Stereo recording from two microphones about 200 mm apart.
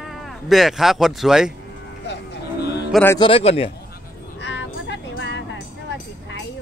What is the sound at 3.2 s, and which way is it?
Speech, 30° left (ahead or behind).